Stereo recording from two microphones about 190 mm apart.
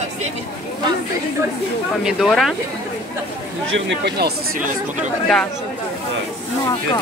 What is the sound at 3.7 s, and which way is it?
Speech, 55° right (ahead or behind).